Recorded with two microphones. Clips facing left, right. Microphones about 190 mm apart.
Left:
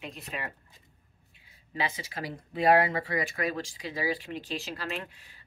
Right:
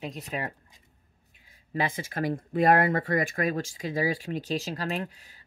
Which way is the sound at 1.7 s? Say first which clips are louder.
Right 4 dB; 50° right (ahead or behind).